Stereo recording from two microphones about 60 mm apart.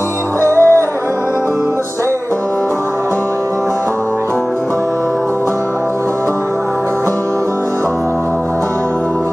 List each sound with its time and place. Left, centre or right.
0.4 s music: right